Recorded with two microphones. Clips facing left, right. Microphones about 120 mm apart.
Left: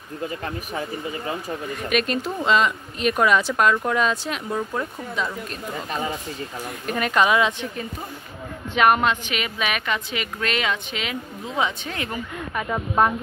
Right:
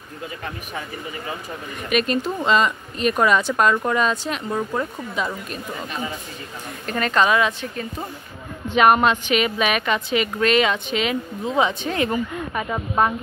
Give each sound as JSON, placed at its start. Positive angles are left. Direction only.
{"t": 1.9, "sound": "speech", "side_deg": 0}
{"t": 6.9, "sound": "speech", "side_deg": 10}
{"t": 8.7, "sound": "a woman's voice", "side_deg": -20}
{"t": 12.5, "sound": "speech", "side_deg": -5}